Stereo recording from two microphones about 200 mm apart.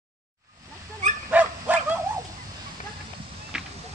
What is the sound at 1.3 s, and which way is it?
Bow-wow, 10° right (ahead or behind).